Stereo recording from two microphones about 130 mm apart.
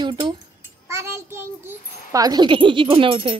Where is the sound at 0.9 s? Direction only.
20° right (ahead or behind).